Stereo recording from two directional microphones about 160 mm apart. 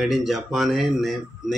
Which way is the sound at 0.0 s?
Centre (ahead or behind).